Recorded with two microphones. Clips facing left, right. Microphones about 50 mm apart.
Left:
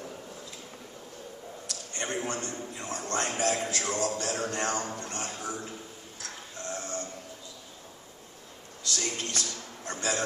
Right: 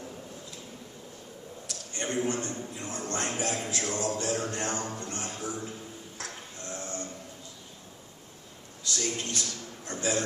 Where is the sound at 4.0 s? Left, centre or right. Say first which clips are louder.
Left 1 dB; right.